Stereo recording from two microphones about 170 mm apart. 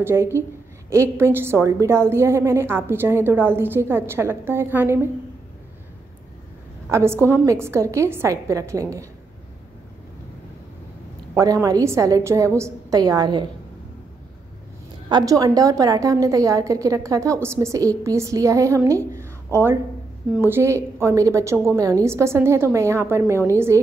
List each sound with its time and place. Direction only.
0.0 s a woman's voice: 15° right (ahead or behind)
6.9 s a woman's voice: 15° right (ahead or behind)
11.3 s a woman's voice: 20° right (ahead or behind)
15.0 s a woman's voice: 25° right (ahead or behind)